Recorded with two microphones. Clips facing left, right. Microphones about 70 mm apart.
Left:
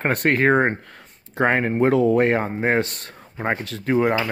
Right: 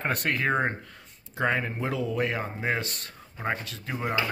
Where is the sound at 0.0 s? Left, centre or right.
Left.